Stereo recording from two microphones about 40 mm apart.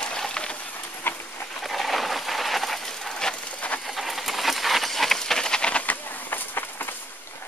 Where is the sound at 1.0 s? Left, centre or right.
Left.